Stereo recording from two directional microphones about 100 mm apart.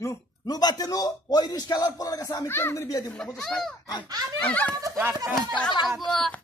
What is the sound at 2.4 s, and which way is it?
Speech, 25° left (ahead or behind).